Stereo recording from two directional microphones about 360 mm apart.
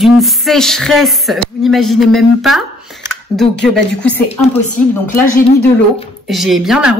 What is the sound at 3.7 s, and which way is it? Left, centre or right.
Speech, centre.